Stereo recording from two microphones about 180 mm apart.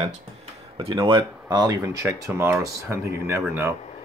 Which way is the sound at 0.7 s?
30° right (ahead or behind).